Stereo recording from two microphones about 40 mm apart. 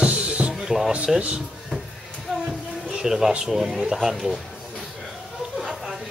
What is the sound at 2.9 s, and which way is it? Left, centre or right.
Speech, centre.